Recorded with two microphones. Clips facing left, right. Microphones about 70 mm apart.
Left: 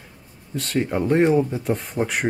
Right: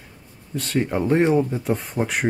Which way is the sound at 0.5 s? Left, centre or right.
Centre.